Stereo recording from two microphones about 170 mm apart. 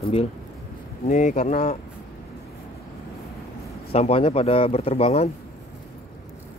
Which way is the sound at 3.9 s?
35° left (ahead or behind).